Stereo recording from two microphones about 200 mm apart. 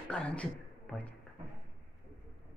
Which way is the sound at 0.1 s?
5° left (ahead or behind).